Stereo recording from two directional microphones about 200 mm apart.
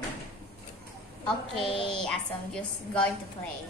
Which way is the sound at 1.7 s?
25° left (ahead or behind).